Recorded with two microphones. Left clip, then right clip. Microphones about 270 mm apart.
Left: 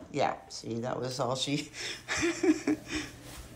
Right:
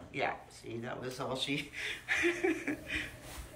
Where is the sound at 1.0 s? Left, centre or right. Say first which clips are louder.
Left 3 dB; centre.